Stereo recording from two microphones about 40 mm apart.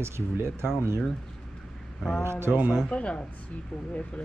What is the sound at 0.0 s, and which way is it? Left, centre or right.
Speech, right.